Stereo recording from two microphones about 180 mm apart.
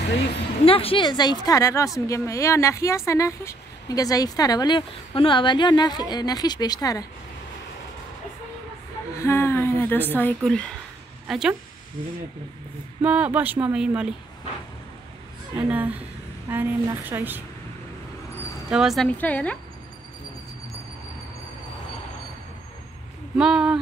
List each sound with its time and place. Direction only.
0.7 s speech: 30° left (ahead or behind)
9.1 s a woman's voice: 15° left (ahead or behind); by 11.5 s centre (ahead or behind)
13.0 s speech: 10° right (ahead or behind)
15.5 s speech: 10° right (ahead or behind)
18.7 s speech: centre (ahead or behind)
23.3 s speech: 5° right (ahead or behind)